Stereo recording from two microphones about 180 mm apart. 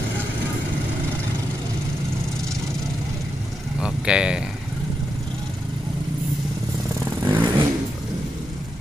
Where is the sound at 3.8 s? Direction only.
5° right (ahead or behind).